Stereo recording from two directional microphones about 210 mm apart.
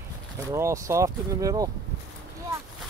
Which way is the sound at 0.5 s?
15° right (ahead or behind).